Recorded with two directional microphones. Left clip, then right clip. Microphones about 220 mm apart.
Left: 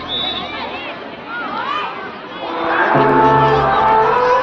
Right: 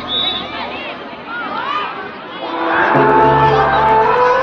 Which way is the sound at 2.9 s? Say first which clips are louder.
Right 1 dB; 30° right (ahead or behind).